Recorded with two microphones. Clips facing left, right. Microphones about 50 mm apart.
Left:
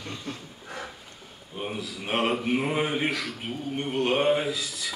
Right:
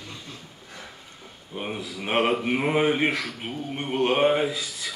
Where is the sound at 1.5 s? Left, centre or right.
Right.